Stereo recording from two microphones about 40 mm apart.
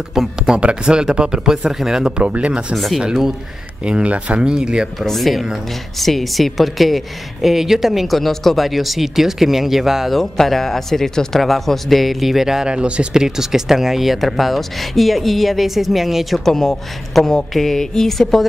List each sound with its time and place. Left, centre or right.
0.1 s speech: centre
0.6 s speech: right
2.1 s speech: right
2.7 s speech: centre
3.8 s speech: right
5.0 s speech: centre
8.2 s speech: centre
10.1 s speech: centre
12.6 s speech: right
13.1 s speech: centre
16.3 s a man's voice: centre